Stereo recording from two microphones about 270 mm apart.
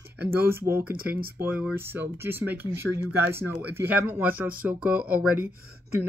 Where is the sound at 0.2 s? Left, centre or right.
Centre.